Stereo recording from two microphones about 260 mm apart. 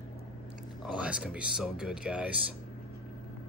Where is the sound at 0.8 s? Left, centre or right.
Centre.